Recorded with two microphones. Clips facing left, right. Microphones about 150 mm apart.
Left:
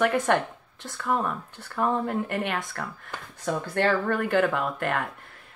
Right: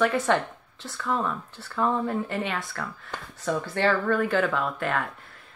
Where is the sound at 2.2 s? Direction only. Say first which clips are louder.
Left 1 dB; 60° left (ahead or behind).